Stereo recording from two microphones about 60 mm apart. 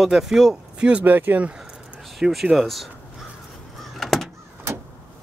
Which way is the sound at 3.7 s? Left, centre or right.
Centre.